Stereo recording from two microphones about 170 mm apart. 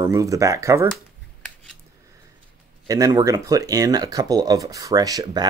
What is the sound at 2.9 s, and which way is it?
Speech, 20° right (ahead or behind).